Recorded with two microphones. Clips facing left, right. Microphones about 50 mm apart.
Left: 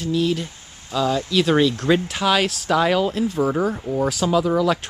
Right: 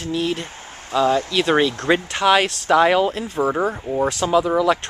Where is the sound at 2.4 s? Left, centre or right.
Centre.